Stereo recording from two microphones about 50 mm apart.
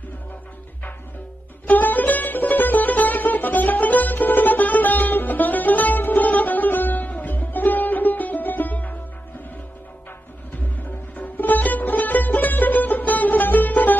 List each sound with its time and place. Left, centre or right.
1.7 s music: left
10.6 s music: left